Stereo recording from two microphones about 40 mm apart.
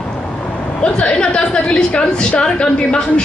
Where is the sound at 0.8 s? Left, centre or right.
Left.